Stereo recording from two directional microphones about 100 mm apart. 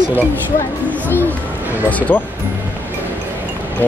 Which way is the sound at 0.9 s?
20° left (ahead or behind).